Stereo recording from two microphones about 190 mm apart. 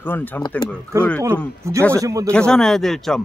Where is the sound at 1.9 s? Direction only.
15° right (ahead or behind).